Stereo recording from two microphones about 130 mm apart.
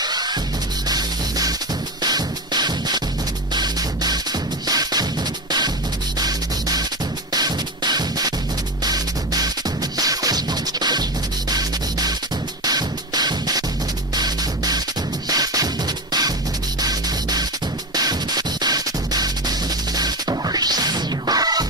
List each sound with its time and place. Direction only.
0.0 s music: 30° right (ahead or behind)
6.1 s music: 30° right (ahead or behind)